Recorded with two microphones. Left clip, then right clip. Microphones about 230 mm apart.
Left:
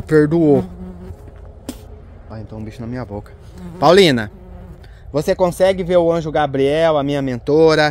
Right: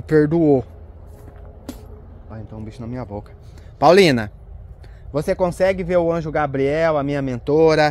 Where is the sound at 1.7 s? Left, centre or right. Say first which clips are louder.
Left 4 dB; centre.